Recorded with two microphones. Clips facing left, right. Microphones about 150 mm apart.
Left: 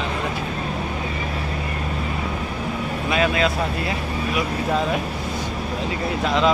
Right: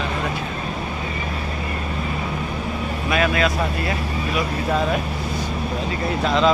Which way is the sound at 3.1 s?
25° left (ahead or behind).